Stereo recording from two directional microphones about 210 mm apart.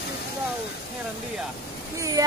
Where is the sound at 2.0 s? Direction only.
15° right (ahead or behind).